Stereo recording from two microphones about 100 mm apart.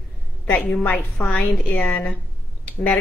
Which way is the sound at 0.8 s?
15° left (ahead or behind).